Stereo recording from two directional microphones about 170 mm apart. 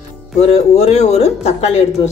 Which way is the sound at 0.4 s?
40° left (ahead or behind).